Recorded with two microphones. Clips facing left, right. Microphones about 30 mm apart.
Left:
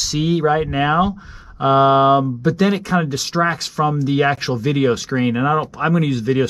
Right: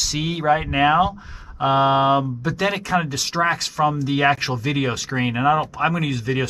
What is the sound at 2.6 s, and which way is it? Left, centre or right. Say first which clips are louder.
Speech: left 1 dB; right.